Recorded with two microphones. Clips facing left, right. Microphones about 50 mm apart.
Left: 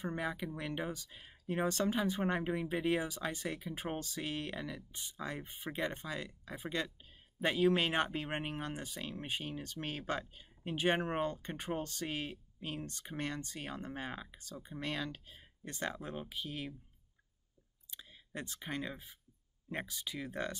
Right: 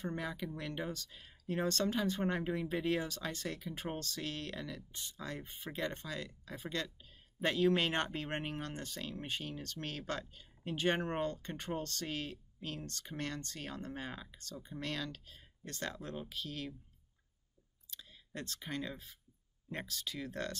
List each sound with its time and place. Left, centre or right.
0.0 s speech: centre
17.8 s speech: centre